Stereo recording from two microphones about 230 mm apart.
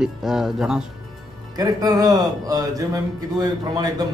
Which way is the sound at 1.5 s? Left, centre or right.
Centre.